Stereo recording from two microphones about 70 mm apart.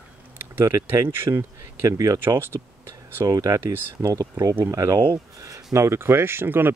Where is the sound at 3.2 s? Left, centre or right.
Right.